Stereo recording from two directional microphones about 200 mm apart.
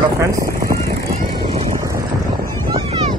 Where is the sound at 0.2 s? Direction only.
15° right (ahead or behind).